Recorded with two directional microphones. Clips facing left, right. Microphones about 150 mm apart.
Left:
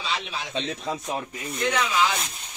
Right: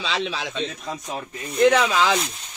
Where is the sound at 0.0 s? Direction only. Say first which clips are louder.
Right 5 dB; 90° right.